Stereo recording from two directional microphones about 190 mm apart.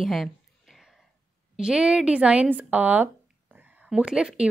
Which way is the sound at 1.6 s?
5° right (ahead or behind).